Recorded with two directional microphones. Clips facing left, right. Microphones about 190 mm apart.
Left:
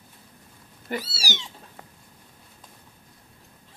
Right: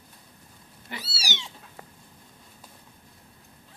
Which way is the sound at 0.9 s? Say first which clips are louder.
Left 7 dB; 45° left (ahead or behind).